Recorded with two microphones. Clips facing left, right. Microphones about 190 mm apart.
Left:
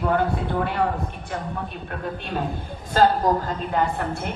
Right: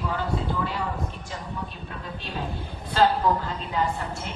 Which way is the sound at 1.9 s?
55° left (ahead or behind).